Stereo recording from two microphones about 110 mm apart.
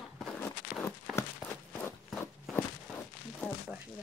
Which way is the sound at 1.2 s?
20° left (ahead or behind).